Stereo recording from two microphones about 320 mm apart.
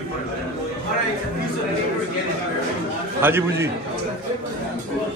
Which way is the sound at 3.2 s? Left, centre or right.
Centre.